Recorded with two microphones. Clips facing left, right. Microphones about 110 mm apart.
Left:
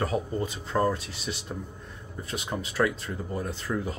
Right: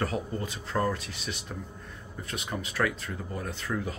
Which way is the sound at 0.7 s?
25° left (ahead or behind).